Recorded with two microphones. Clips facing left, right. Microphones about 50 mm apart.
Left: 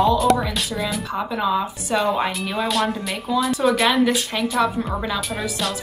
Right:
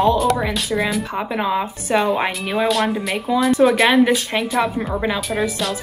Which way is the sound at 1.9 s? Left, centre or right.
Centre.